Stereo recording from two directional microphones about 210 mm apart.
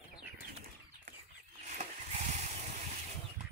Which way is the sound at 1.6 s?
35° right (ahead or behind).